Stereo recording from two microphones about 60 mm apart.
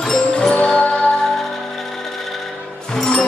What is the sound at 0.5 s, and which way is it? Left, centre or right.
Music, left.